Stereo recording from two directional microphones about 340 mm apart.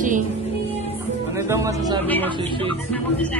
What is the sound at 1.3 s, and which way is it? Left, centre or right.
Speech, centre.